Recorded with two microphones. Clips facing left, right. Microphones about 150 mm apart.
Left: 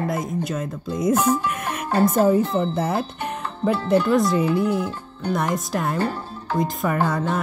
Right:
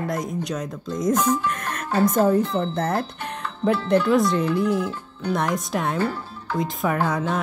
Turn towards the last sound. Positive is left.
turn(degrees=0)  # may be behind; listen again after turning